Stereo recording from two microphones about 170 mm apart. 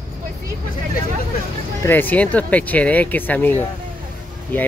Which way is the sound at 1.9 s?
10° left (ahead or behind).